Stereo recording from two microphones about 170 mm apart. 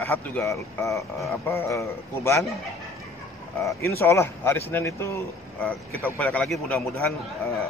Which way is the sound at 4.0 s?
15° left (ahead or behind).